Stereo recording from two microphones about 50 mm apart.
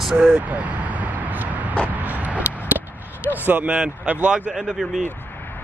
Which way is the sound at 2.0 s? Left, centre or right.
Right.